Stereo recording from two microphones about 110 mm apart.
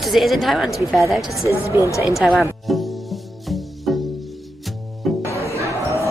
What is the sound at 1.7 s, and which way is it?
Speech, 30° left (ahead or behind).